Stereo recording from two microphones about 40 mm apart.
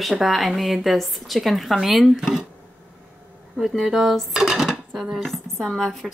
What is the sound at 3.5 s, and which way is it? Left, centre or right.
Dishes, centre.